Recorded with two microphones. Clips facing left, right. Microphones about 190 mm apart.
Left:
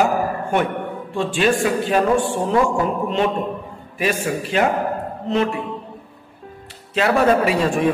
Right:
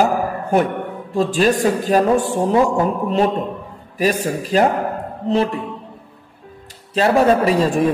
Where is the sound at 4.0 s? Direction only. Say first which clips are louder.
Right 3 dB; 35° right (ahead or behind).